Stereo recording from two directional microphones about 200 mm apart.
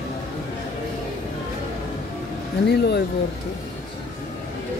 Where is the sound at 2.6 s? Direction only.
55° left (ahead or behind).